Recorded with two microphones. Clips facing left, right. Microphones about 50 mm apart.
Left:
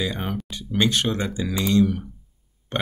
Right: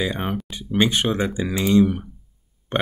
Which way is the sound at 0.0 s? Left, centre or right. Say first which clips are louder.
Right 3 dB; centre.